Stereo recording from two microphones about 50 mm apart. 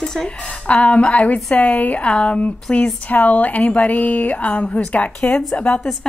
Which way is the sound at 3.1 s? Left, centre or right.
Left.